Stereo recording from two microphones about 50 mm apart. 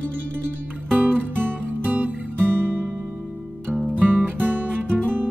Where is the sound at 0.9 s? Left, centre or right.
Centre.